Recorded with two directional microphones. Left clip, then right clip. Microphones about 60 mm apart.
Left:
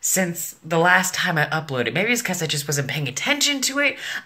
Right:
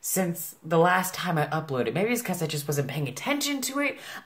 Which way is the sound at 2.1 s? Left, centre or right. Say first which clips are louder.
Left 7 dB; right.